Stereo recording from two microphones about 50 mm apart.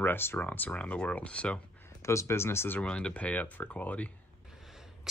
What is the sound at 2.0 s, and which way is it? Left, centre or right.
Speech, left.